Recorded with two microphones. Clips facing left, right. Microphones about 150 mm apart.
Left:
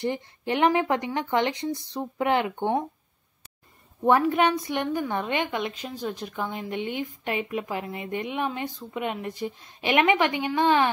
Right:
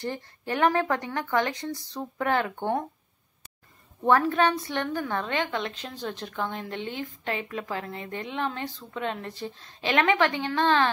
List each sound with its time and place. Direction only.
0.0 s speech: 20° left (ahead or behind)
4.0 s a woman's voice: 15° left (ahead or behind)